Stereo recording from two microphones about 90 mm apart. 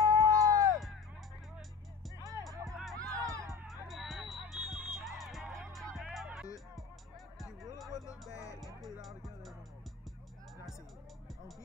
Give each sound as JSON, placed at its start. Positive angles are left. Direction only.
{"t": 0.0, "sound": "music", "side_deg": -45}
{"t": 2.7, "sound": "music", "side_deg": 0}
{"t": 3.1, "sound": "music", "side_deg": -40}
{"t": 3.6, "sound": "music", "side_deg": 0}
{"t": 8.3, "sound": "music", "side_deg": 35}
{"t": 9.0, "sound": "music", "side_deg": 0}